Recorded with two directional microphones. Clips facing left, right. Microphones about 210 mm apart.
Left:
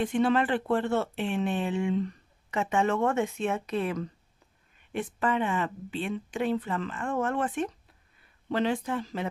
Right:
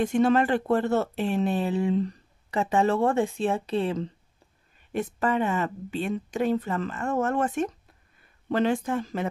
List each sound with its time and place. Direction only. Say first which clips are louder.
0.0 s speech: right 3 dB; 45° right (ahead or behind); by 4.1 s 30° right (ahead or behind)
4.9 s speech: right 3 dB; 40° right (ahead or behind)